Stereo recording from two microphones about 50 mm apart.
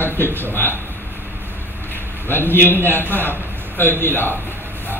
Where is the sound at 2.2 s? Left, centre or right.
Left.